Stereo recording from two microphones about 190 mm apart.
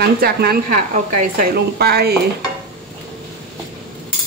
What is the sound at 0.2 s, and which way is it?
Speech, 55° right (ahead or behind).